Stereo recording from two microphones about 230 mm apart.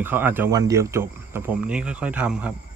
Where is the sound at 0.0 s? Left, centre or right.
Centre.